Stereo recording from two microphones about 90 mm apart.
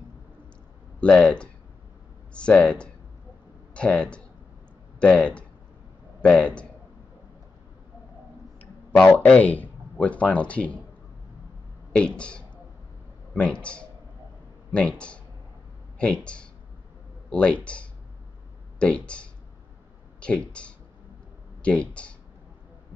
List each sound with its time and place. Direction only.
1.0 s speech: 10° left (ahead or behind)
9.0 s speech: 20° left (ahead or behind)
11.9 s speech: 10° left (ahead or behind)
18.8 s speech: 10° left (ahead or behind)
21.6 s speech: 15° left (ahead or behind)